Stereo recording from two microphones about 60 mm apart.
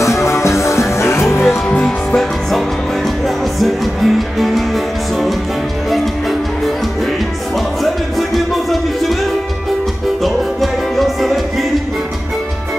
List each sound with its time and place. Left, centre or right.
0.0 s music: left
1.7 s music: centre
3.5 s music: centre
10.2 s music: centre